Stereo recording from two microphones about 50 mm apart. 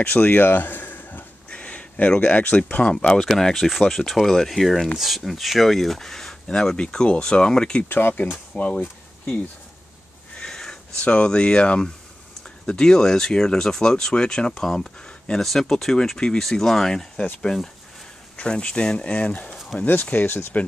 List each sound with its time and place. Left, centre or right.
0.2 s a sound: left
1.5 s speech: left
3.2 s speech: centre
7.9 s speech: left
10.3 s a sound: centre
12.4 s speech: centre
15.3 s speech: centre
18.3 s speech: centre; by 20.5 s left